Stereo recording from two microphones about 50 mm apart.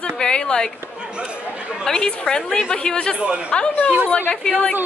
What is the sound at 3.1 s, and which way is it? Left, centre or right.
Speech, right.